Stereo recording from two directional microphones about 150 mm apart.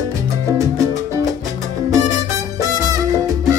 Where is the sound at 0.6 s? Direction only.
20° right (ahead or behind).